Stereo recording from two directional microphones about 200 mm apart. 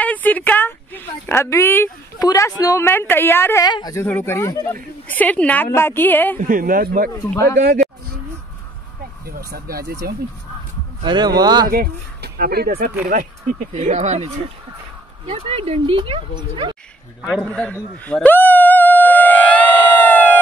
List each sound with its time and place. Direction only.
0.0 s a woman's voice: 10° left (ahead or behind)
6.4 s speech: 45° right (ahead or behind)
7.1 s speech: 15° left (ahead or behind)
7.5 s speech: 35° right (ahead or behind)
9.5 s speech: 50° right (ahead or behind)
11.0 s speech: 20° right (ahead or behind)
11.7 s speech: 50° right (ahead or behind); by 16.7 s 25° right (ahead or behind)
17.2 s speech: centre (ahead or behind)
20.1 s a sound: 10° left (ahead or behind)